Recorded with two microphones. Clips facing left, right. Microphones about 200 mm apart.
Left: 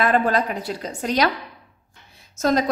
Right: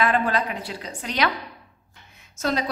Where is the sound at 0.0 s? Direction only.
40° left (ahead or behind).